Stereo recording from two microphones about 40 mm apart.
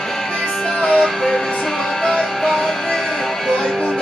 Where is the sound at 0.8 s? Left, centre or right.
Left.